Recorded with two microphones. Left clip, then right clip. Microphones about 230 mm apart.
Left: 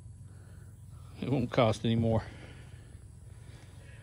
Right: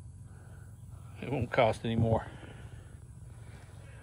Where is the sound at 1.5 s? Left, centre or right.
Left.